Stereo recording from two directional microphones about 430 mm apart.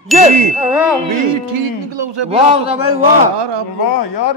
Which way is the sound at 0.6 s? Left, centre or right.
Centre.